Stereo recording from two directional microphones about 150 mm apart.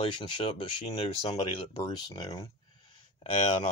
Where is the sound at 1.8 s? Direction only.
25° left (ahead or behind).